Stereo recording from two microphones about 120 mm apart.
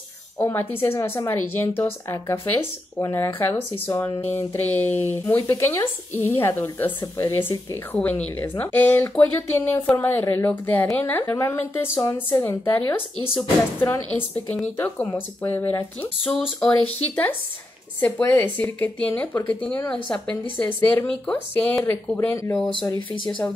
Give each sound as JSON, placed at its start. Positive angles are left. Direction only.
{"t": 0.4, "sound": "speech", "side_deg": 15}